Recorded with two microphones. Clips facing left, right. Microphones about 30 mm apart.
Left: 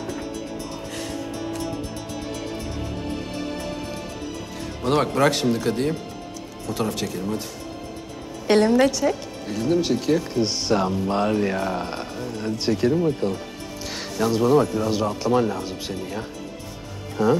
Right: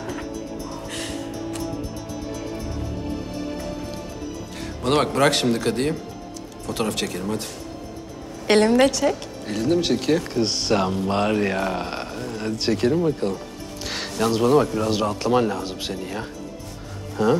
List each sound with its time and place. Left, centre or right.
3.1 s music: left
4.8 s speech: right
8.5 s speech: right